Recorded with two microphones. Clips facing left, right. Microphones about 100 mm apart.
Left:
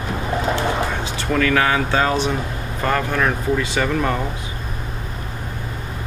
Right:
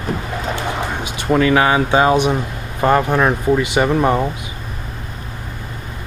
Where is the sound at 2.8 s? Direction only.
20° right (ahead or behind).